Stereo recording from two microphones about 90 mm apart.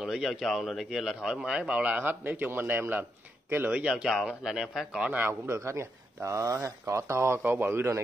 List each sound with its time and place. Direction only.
0.0 s speech: 5° right (ahead or behind); by 3.7 s 25° right (ahead or behind)
3.7 s speech: 10° right (ahead or behind)
5.5 s speech: 30° right (ahead or behind)